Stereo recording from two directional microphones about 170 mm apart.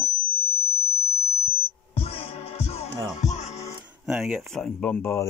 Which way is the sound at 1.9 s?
35° left (ahead or behind).